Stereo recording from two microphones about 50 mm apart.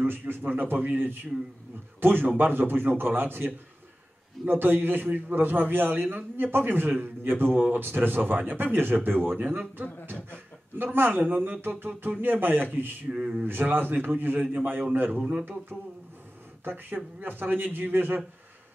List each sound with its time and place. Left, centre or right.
0.0 s a man's voice: right
13.1 s speech: centre
13.4 s a man's voice: right
16.6 s a man's voice: right